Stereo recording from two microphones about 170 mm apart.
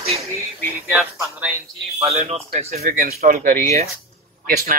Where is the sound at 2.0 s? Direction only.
40° right (ahead or behind).